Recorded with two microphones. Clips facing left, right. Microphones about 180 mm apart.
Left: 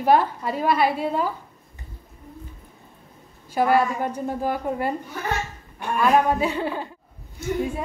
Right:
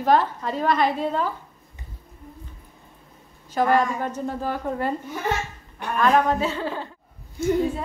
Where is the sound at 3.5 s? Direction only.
10° left (ahead or behind).